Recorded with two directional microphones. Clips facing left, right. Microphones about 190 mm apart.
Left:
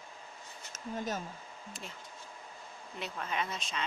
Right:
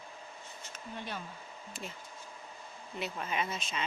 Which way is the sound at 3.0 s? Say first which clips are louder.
Right 1 dB; 5° right (ahead or behind).